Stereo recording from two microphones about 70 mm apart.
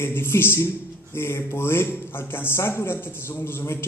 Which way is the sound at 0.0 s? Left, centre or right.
Left.